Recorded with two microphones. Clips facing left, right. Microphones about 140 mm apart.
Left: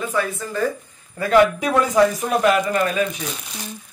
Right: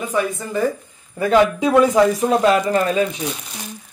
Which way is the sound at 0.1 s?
15° right (ahead or behind).